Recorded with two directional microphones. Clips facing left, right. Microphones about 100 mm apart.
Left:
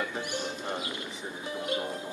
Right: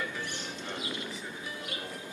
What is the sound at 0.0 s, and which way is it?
Music, 25° left (ahead or behind).